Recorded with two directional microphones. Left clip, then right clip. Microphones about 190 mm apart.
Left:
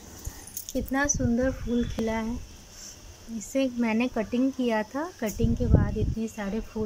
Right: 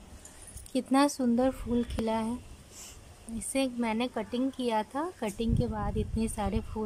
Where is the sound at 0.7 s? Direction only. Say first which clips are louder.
Right 1 dB; 10° right (ahead or behind).